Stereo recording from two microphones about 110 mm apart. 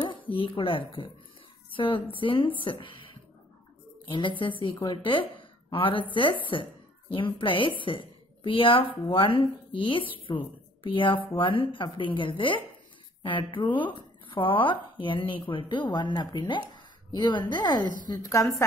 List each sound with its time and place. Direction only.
0.3 s speech: 55° left (ahead or behind)
4.1 s speech: 50° left (ahead or behind); by 18.5 s 35° left (ahead or behind)